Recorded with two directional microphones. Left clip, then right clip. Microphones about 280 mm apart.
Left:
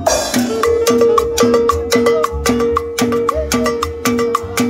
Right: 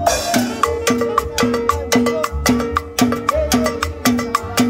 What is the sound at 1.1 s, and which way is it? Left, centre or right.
Music, left.